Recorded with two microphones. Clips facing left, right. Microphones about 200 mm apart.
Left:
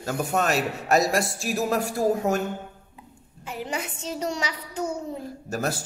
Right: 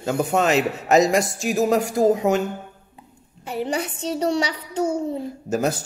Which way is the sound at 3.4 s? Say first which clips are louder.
Right 6 dB; 35° right (ahead or behind).